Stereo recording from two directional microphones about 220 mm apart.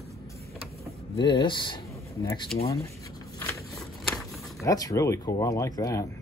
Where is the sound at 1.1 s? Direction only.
20° left (ahead or behind).